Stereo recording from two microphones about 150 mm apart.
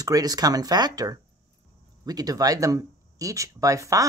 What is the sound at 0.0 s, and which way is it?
Speech, 25° right (ahead or behind).